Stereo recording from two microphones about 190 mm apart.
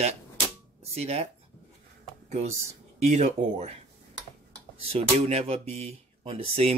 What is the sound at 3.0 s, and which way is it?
Speech, 35° right (ahead or behind).